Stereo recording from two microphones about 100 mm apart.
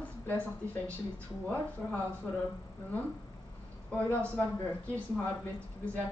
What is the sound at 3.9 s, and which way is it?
Speech, 15° left (ahead or behind).